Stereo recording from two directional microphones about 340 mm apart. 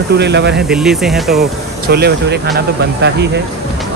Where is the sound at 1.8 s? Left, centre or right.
Right.